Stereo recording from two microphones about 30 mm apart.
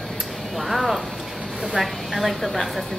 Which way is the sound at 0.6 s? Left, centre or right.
Centre.